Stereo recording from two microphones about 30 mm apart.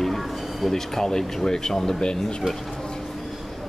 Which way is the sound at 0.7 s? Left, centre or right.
Centre.